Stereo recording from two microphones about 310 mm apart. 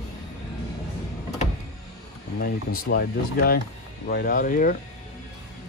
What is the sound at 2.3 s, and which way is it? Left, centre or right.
Speech, left.